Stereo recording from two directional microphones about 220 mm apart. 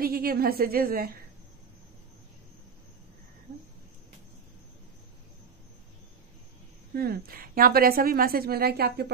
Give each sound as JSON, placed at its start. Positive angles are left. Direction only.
{"t": 0.0, "sound": "a woman's voice", "side_deg": -45}
{"t": 6.9, "sound": "a woman's voice", "side_deg": -45}